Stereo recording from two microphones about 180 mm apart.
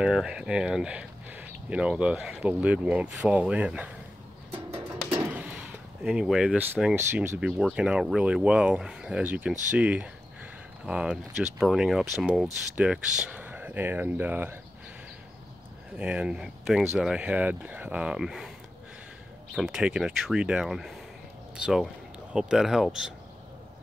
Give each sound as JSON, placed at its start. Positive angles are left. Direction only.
{"t": 0.0, "sound": "speech", "side_deg": -5}
{"t": 4.6, "sound": "music", "side_deg": -30}
{"t": 5.2, "sound": "speech", "side_deg": -10}
{"t": 16.0, "sound": "speech", "side_deg": -5}
{"t": 19.5, "sound": "speech", "side_deg": -5}